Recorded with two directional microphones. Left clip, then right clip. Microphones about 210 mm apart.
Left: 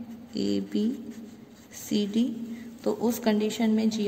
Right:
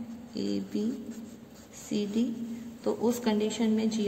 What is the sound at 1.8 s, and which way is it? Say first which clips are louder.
A woman's voice: left 3 dB; 35° left (ahead or behind).